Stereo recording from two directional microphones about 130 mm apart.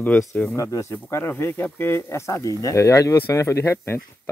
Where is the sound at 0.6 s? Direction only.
25° left (ahead or behind).